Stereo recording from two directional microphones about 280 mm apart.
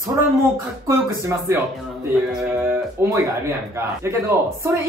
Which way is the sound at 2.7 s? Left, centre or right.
Centre.